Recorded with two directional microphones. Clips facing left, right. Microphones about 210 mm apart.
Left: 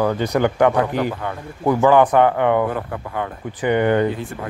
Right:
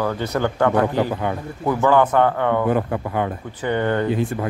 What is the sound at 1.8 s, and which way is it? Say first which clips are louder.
Speech: left 2 dB; 15° left (ahead or behind).